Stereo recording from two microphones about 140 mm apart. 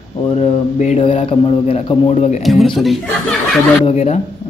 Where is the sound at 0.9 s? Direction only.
40° left (ahead or behind).